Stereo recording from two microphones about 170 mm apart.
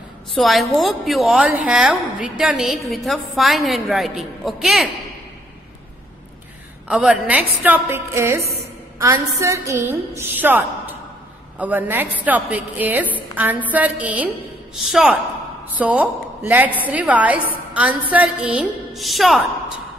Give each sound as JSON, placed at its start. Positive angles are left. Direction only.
{"t": 0.3, "sound": "a woman's voice", "side_deg": 0}
{"t": 6.9, "sound": "a woman's voice", "side_deg": -5}